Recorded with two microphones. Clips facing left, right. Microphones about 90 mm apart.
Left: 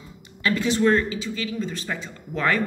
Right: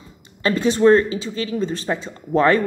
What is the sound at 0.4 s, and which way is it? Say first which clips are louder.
Speech: right 5 dB; 30° right (ahead or behind).